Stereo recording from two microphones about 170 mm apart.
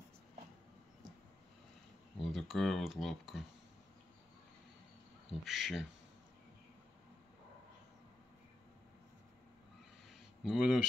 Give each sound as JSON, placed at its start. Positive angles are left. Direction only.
{"t": 2.1, "sound": "speech", "side_deg": 0}
{"t": 5.4, "sound": "speech", "side_deg": 0}
{"t": 10.4, "sound": "speech", "side_deg": -5}